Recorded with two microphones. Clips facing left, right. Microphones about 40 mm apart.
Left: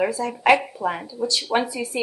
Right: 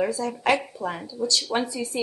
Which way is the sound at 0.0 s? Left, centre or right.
Left.